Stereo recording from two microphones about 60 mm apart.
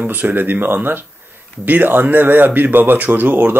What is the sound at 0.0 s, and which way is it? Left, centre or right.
Speech, right.